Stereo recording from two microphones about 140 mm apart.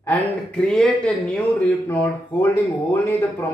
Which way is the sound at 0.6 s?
5° left (ahead or behind).